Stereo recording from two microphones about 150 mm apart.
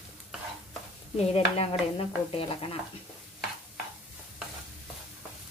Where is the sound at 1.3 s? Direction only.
40° left (ahead or behind).